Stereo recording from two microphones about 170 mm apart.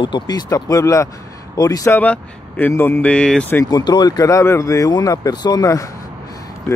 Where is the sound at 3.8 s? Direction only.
25° left (ahead or behind).